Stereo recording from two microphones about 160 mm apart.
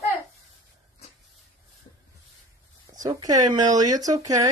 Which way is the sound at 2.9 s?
20° right (ahead or behind).